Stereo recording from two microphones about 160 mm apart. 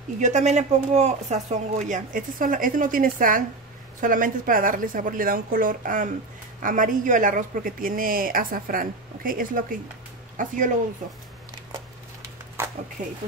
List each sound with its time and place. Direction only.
0.2 s speech: 45° right (ahead or behind)
13.0 s speech: 50° right (ahead or behind)